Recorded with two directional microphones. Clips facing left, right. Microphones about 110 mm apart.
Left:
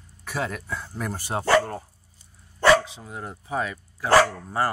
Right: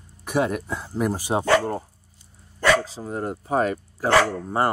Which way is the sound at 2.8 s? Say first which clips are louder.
Right 8 dB; 35° right (ahead or behind).